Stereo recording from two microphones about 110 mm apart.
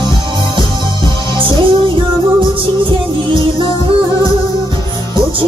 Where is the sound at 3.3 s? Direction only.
50° right (ahead or behind).